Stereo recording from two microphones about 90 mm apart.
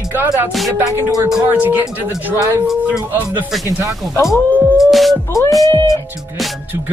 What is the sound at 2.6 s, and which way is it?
Speech, 5° right (ahead or behind).